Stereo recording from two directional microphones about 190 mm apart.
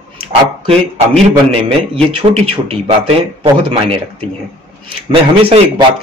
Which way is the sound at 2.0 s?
30° right (ahead or behind).